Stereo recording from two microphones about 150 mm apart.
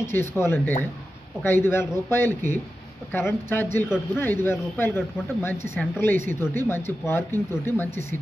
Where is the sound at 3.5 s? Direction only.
15° left (ahead or behind).